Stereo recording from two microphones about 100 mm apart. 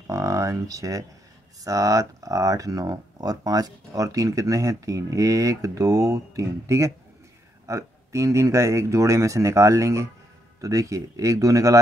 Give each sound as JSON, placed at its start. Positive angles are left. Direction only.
{"t": 0.0, "sound": "speech", "side_deg": -35}